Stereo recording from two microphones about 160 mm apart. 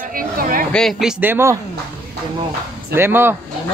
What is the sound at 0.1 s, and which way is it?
Speech, 60° right (ahead or behind).